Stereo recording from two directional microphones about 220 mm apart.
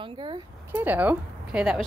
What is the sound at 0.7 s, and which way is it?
Speech, 10° right (ahead or behind).